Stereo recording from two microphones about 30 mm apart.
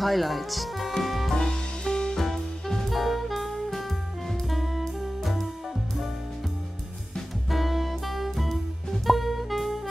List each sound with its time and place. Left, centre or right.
0.0 s speech: centre
1.3 s music: left
2.1 s music: centre
2.9 s saxophone: centre
4.3 s music: centre
7.4 s music: centre